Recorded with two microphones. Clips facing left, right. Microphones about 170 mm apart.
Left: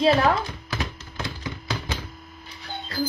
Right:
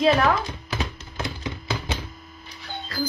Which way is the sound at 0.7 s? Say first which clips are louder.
Right 1 dB; 20° right (ahead or behind).